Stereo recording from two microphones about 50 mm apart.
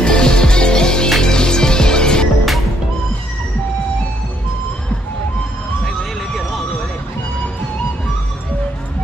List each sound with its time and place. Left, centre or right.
0.0 s music: centre
5.9 s music: centre